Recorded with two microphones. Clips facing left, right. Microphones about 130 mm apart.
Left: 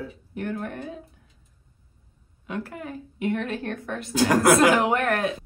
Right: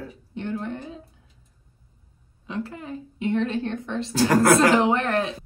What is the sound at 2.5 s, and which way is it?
Speech, 30° right (ahead or behind).